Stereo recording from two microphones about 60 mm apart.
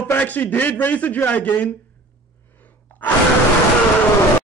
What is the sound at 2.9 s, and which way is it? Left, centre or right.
Sigh, left.